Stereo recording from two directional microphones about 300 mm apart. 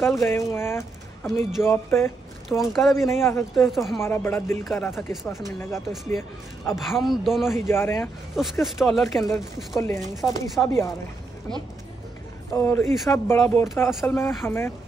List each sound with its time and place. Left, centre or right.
0.0 s speech: centre
12.5 s speech: centre